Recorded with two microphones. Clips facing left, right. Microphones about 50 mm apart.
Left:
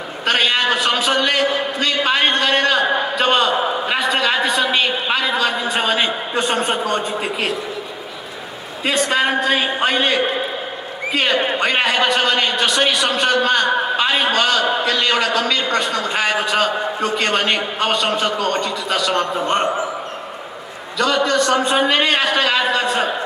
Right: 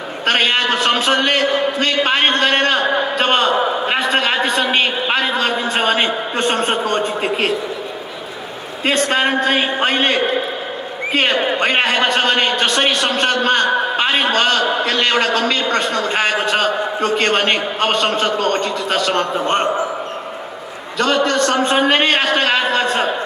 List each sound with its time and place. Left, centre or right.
0.2 s a sound: right
8.8 s a man's voice: right
21.0 s a man's voice: right